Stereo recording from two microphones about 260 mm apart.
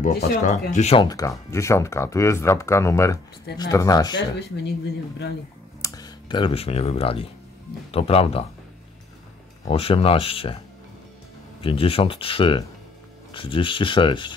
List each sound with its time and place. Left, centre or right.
0.0 s speech: left
5.8 s speech: centre
9.7 s speech: left
11.6 s speech: left